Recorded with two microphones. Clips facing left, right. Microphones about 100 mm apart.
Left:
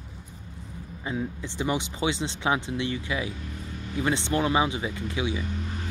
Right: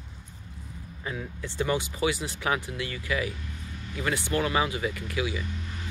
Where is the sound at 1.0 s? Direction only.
20° left (ahead or behind).